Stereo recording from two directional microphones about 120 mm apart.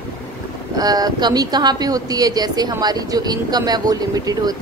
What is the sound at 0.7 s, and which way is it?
A woman's voice, 30° right (ahead or behind).